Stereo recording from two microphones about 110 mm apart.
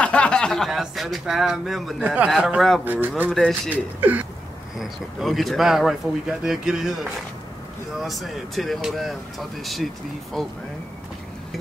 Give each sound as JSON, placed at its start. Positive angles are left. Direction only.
{"t": 0.0, "sound": "speech", "side_deg": 10}
{"t": 2.8, "sound": "speech", "side_deg": -15}
{"t": 3.3, "sound": "speech", "side_deg": 0}
{"t": 3.7, "sound": "speech", "side_deg": -15}
{"t": 4.7, "sound": "speech", "side_deg": 0}